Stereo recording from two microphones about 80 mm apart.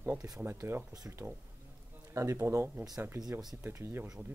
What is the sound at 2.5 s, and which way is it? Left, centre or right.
Speech, right.